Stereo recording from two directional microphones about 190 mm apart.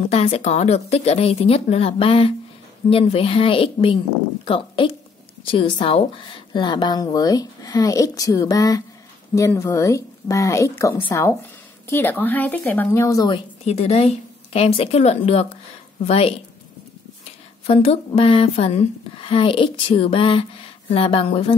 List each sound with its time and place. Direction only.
0.1 s a woman's voice: 35° left (ahead or behind)
11.9 s a woman's voice: 10° left (ahead or behind)
13.7 s a woman's voice: 35° left (ahead or behind)
17.6 s speech: 30° left (ahead or behind)